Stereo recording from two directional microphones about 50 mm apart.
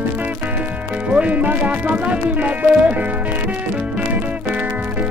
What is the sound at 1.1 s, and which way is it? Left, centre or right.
Speech, right.